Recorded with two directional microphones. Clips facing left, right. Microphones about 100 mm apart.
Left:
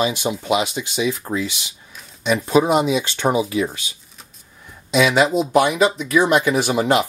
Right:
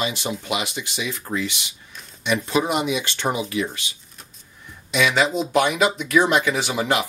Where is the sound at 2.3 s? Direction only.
30° left (ahead or behind).